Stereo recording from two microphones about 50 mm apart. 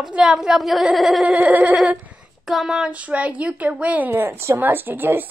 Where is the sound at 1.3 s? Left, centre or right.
Right.